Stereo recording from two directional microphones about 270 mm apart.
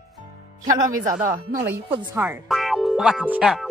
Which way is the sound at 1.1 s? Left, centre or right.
Right.